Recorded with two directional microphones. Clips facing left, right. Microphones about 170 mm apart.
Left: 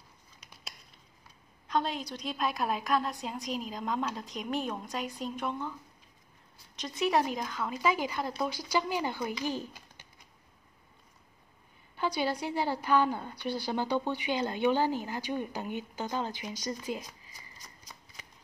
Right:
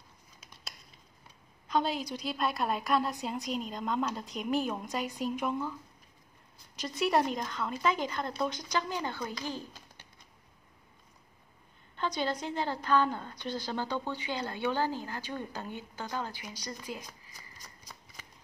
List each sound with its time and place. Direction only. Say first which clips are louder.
1.7 s a woman's voice: right 1 dB; 5° right (ahead or behind)
6.8 s a woman's voice: even; centre (ahead or behind); by 9.8 s 15° left (ahead or behind)
12.0 s a woman's voice: left 2 dB; 10° left (ahead or behind)